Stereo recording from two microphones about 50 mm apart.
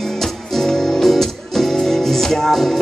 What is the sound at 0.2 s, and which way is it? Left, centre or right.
Music, centre.